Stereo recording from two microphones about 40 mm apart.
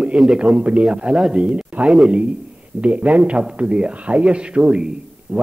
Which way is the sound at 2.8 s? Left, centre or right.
Right.